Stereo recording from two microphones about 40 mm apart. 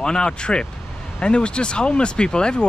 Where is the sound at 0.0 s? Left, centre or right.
Centre.